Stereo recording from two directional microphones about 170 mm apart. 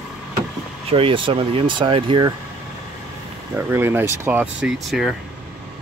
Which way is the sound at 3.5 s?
15° right (ahead or behind).